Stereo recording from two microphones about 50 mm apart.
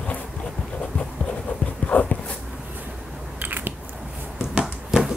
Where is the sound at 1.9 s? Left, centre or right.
Left.